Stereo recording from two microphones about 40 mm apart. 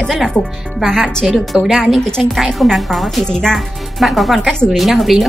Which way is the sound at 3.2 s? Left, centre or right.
Centre.